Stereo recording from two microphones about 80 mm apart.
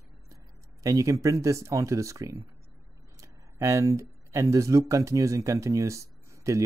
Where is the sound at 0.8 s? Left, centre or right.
Right.